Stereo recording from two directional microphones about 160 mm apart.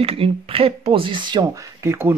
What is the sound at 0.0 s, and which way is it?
Speech, 35° right (ahead or behind).